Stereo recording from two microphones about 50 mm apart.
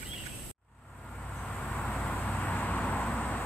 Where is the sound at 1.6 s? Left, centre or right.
Centre.